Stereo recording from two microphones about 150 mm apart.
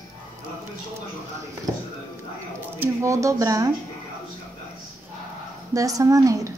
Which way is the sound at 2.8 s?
20° right (ahead or behind).